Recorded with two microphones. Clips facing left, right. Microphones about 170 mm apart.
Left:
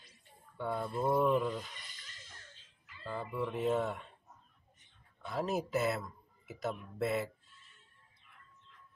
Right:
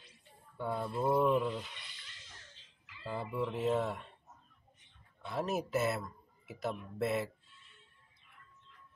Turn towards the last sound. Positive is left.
turn(degrees=40)  # may be behind; listen again after turning